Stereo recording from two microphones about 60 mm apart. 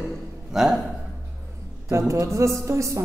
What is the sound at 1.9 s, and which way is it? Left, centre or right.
A woman's voice, right.